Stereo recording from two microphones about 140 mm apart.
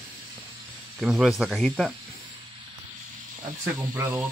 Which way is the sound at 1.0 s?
Centre (ahead or behind).